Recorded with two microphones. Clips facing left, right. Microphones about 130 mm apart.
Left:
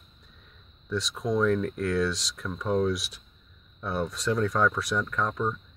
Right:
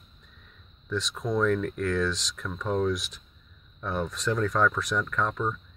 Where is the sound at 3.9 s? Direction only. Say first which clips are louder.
Left 1 dB; 30° left (ahead or behind).